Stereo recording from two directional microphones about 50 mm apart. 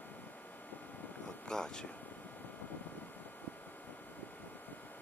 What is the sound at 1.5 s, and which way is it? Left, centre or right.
Speech, centre.